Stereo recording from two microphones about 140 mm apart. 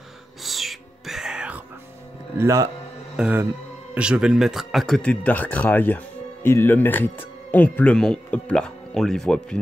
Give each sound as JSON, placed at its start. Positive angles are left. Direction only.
{"t": 0.4, "sound": "cat", "side_deg": 0}
{"t": 2.3, "sound": "speech", "side_deg": -20}
{"t": 3.2, "sound": "speech", "side_deg": -10}